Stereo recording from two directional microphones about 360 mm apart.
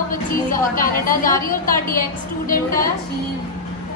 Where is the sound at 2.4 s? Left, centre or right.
Left.